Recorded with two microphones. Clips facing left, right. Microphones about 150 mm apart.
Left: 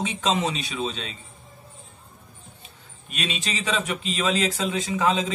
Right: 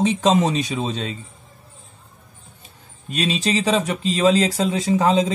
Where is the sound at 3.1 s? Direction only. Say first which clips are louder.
Right 9 dB; 35° right (ahead or behind).